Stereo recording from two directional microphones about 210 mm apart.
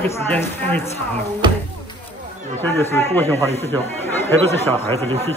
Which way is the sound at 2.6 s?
10° left (ahead or behind).